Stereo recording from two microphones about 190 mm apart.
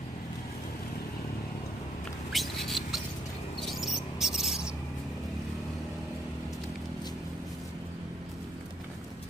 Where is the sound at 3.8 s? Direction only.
Centre (ahead or behind).